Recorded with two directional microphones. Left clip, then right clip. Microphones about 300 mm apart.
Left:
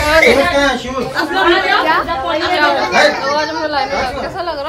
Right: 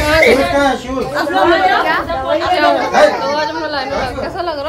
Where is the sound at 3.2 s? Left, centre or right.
Centre.